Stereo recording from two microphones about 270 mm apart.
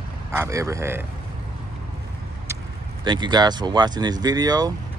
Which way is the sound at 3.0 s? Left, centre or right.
Centre.